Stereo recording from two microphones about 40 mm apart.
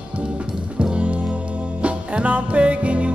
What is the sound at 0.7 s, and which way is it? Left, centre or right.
Music, right.